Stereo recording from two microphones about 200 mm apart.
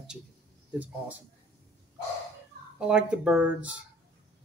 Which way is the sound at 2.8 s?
5° right (ahead or behind).